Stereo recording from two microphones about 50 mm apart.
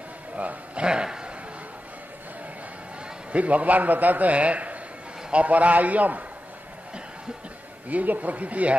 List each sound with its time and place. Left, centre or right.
0.4 s a man's voice: right
0.8 s a man's voice: centre
3.3 s a man's voice: right
7.9 s a man's voice: right